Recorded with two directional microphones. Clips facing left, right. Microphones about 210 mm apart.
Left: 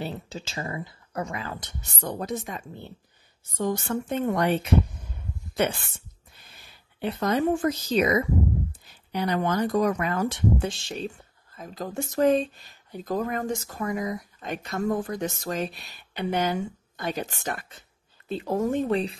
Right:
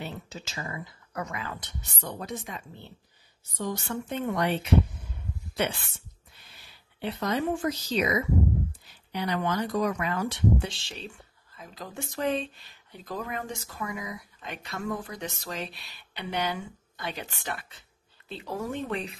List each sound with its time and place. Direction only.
0.0 s speech: 30° left (ahead or behind)
5.6 s speech: 45° left (ahead or behind)
7.0 s speech: 50° left (ahead or behind)